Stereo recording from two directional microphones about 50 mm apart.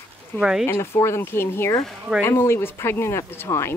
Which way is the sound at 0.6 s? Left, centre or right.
Left.